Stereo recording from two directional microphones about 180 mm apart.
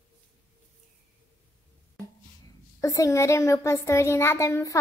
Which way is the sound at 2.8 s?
20° left (ahead or behind).